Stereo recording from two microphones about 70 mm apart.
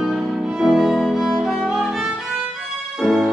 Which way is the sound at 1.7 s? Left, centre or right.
Centre.